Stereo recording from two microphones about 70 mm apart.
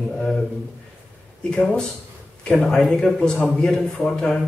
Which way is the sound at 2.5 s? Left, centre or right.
Centre.